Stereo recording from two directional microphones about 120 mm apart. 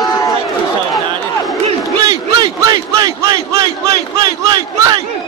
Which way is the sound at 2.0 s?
35° right (ahead or behind).